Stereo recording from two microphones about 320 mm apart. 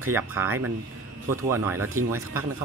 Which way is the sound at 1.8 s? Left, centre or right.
Right.